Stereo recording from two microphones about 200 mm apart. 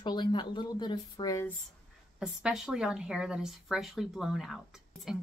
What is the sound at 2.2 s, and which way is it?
Speech, 5° right (ahead or behind).